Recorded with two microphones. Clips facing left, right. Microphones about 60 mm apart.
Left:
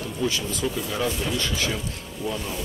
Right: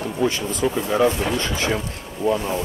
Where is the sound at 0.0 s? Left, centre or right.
Right.